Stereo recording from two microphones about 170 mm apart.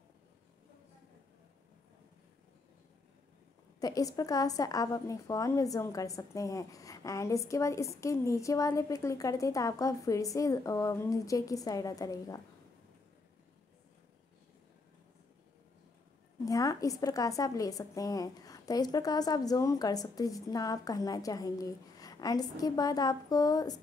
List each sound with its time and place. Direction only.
3.8 s a woman's voice: 20° left (ahead or behind)
16.4 s a woman's voice: 20° left (ahead or behind)